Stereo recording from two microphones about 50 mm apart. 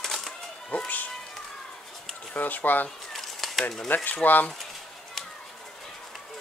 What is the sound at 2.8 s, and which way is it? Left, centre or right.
Bird, centre.